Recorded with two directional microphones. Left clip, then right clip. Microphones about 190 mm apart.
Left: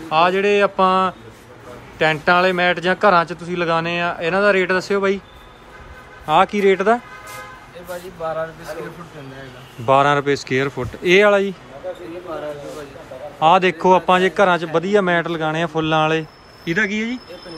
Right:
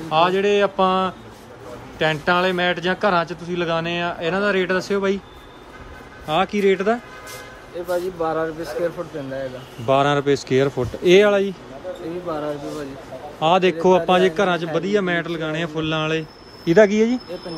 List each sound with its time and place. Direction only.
0.1 s a man's voice: 15° right (ahead or behind)
6.2 s a man's voice: 5° right (ahead or behind)
8.2 s a man's voice: 50° right (ahead or behind)
9.8 s a man's voice: 10° right (ahead or behind)
13.4 s a man's voice: 10° right (ahead or behind)
16.6 s speech: 30° right (ahead or behind)